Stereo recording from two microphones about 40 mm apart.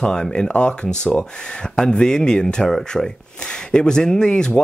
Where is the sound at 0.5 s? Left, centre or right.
Left.